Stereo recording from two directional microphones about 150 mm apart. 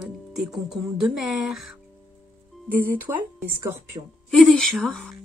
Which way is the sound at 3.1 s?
25° right (ahead or behind).